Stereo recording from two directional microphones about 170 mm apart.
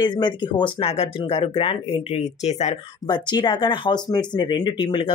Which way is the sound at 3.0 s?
25° left (ahead or behind).